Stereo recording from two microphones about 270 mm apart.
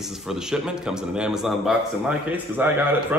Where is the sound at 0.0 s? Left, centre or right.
Centre.